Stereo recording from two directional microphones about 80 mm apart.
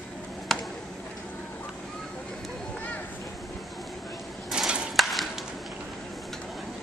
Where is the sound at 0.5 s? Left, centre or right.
Centre.